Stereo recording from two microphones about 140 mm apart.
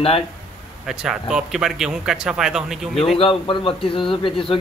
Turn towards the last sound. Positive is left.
turn(degrees=40)  # may be behind; listen again after turning